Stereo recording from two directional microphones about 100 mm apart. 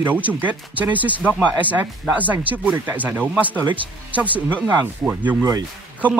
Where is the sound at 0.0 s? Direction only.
15° right (ahead or behind).